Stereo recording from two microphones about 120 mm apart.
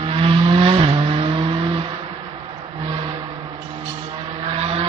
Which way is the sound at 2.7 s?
50° right (ahead or behind).